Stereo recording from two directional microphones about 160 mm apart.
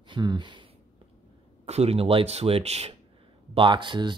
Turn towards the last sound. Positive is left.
turn(degrees=-30)  # may be behind; listen again after turning